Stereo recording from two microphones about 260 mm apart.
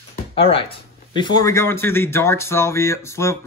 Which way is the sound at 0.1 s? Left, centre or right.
Left.